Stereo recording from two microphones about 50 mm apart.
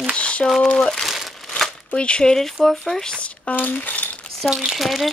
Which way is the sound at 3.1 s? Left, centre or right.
Left.